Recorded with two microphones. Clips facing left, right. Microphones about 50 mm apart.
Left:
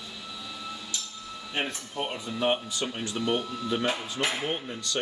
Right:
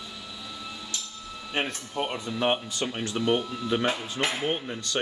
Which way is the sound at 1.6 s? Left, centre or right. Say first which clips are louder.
Right 1 dB; right.